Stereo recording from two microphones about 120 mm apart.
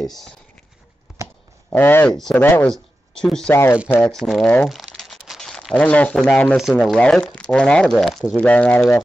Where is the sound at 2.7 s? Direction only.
5° left (ahead or behind).